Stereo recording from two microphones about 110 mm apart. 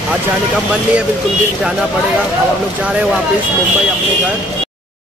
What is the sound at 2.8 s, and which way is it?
Speech, 10° right (ahead or behind).